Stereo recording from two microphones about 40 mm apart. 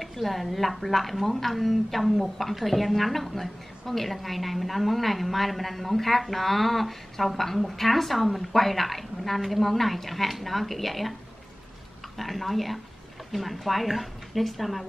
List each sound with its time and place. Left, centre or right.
0.0 s speech: centre
12.2 s speech: centre